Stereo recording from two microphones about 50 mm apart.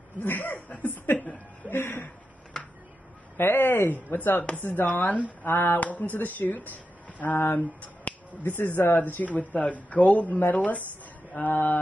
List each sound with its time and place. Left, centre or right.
0.2 s speech: left
1.0 s a sound: left
3.3 s speech: left
7.3 s speech: left
7.8 s speech: left